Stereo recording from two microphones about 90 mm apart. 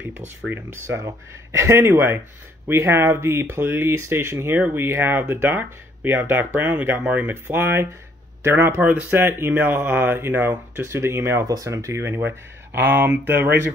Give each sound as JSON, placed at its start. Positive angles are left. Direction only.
{"t": 0.5, "sound": "speech", "side_deg": -30}